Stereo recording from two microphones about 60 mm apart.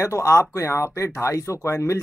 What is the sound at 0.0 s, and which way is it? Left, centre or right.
Speech, left.